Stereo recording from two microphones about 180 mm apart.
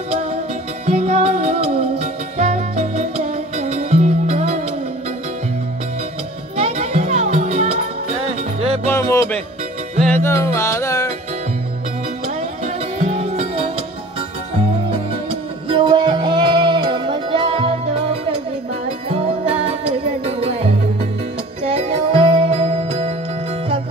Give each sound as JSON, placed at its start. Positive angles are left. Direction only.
{"t": 0.8, "sound": "music", "side_deg": -35}
{"t": 6.5, "sound": "music", "side_deg": -35}
{"t": 8.8, "sound": "music", "side_deg": 15}
{"t": 13.2, "sound": "music", "side_deg": -35}
{"t": 15.7, "sound": "music", "side_deg": -30}
{"t": 20.2, "sound": "music", "side_deg": -35}
{"t": 21.6, "sound": "music", "side_deg": -35}